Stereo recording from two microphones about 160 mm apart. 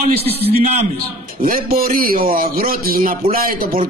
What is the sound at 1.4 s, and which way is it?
A man's voice, 65° right (ahead or behind).